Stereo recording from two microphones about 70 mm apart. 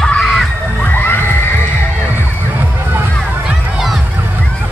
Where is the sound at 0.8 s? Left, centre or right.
Left.